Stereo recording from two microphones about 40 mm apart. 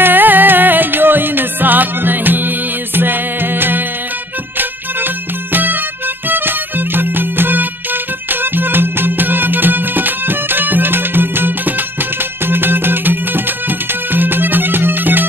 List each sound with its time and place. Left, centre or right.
0.0 s music: right